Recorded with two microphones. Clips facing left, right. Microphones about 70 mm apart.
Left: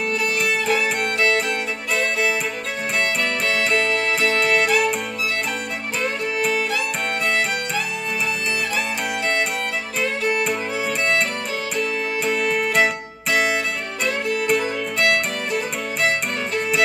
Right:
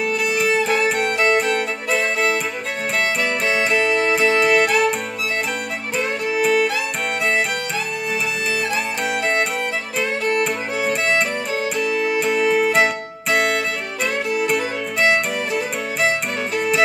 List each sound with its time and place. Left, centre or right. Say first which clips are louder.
0.0 s music: right 2 dB; centre
1.0 s music: right 2 dB; centre
1.4 s music: right 4 dB; centre
6.2 s music: right 7 dB; centre
9.2 s music: right 2 dB; centre